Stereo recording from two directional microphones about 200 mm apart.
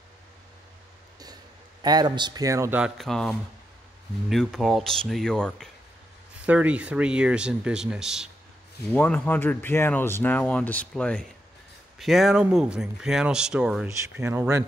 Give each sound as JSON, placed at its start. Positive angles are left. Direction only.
{"t": 1.2, "sound": "speech", "side_deg": -20}